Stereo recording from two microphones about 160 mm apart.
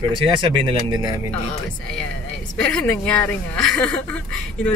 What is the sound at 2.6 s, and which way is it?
Speech, 5° left (ahead or behind).